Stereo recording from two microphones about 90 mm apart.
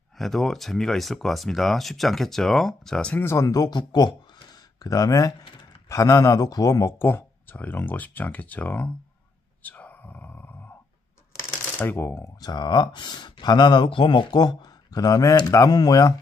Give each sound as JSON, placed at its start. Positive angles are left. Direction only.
{"t": 0.2, "sound": "speech", "side_deg": 0}
{"t": 3.2, "sound": "speech", "side_deg": 30}
{"t": 9.6, "sound": "a sound", "side_deg": 15}
{"t": 11.8, "sound": "speech", "side_deg": 25}
{"t": 12.4, "sound": "speech", "side_deg": 50}